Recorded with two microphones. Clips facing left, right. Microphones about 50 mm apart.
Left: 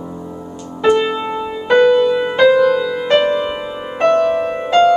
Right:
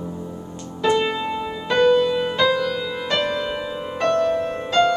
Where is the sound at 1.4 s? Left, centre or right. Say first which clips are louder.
Left 7 dB; centre.